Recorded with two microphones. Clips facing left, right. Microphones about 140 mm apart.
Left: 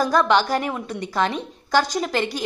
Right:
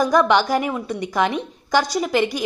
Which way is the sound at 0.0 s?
15° right (ahead or behind).